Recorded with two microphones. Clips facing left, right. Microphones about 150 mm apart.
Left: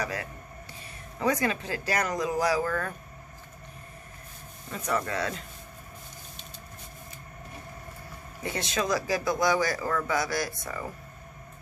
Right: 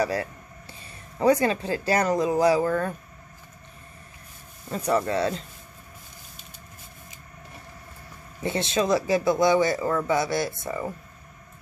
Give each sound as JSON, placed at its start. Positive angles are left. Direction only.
{"t": 0.0, "sound": "speech", "side_deg": -30}
{"t": 4.6, "sound": "speech", "side_deg": -35}
{"t": 8.4, "sound": "speech", "side_deg": -25}